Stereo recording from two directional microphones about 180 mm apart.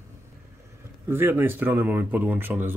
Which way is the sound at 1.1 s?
10° right (ahead or behind).